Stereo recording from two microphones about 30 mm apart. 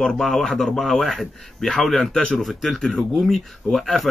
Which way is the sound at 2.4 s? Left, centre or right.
Centre.